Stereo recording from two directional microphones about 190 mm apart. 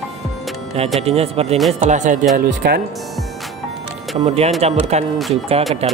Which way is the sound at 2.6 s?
60° right (ahead or behind).